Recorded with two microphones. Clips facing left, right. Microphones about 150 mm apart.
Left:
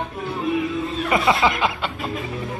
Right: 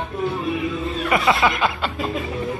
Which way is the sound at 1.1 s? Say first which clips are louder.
Even; 20° left (ahead or behind).